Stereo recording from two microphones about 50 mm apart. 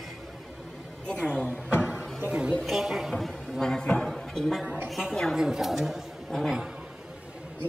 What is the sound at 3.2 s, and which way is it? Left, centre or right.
Speech, centre.